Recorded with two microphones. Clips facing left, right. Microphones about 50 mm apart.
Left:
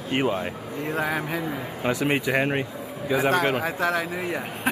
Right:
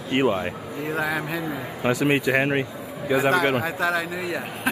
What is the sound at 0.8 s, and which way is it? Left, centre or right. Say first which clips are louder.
A man's voice: right 1 dB; centre.